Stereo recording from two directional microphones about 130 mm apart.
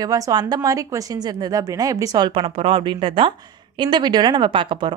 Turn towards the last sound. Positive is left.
turn(degrees=-40)  # may be behind; listen again after turning